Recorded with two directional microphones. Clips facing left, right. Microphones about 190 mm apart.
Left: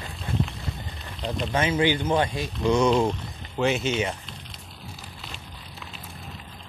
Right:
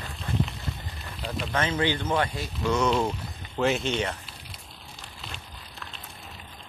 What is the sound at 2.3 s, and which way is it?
Speech, 15° left (ahead or behind).